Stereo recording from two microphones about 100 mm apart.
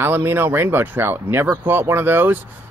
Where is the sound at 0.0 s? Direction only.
25° right (ahead or behind).